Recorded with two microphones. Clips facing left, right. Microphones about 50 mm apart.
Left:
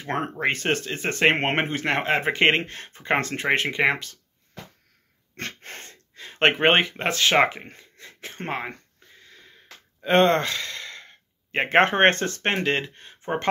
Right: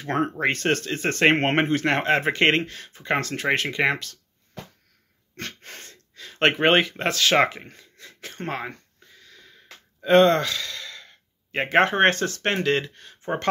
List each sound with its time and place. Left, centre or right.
0.0 s speech: left
0.4 s speech: centre
2.6 s speech: left
5.3 s speech: left
9.2 s a sound: left
10.0 s speech: left
12.4 s speech: left